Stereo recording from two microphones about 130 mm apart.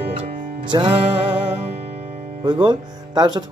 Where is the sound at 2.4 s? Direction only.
35° right (ahead or behind).